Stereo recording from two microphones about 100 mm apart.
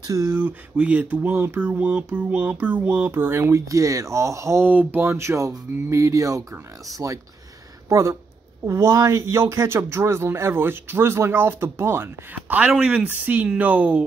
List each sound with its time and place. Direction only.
0.0 s a sound: 30° right (ahead or behind)
0.4 s speech: 15° right (ahead or behind); by 4.6 s 30° right (ahead or behind)
4.6 s speech: 20° right (ahead or behind)
5.0 s speech: 30° right (ahead or behind)
5.9 s a sound: 30° right (ahead or behind)
8.6 s speech: 30° right (ahead or behind)